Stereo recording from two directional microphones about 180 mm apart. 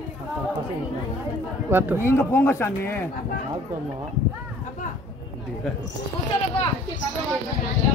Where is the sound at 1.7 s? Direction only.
10° right (ahead or behind).